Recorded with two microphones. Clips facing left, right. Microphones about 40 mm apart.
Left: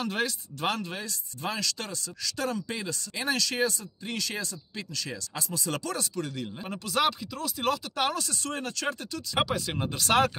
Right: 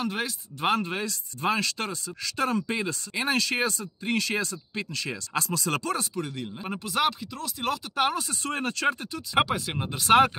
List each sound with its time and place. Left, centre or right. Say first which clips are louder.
0.0 s speech: even; centre
0.7 s speech: right 5 dB; right
5.3 s speech: right 6 dB; right
5.7 s speech: right 2 dB; right
6.1 s speech: right 1 dB; centre
7.9 s speech: right 3 dB; centre
8.5 s speech: right 7 dB; right
9.1 s speech: right 3 dB; centre